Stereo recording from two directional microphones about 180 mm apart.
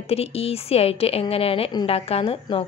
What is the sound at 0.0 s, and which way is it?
Speech, 35° left (ahead or behind).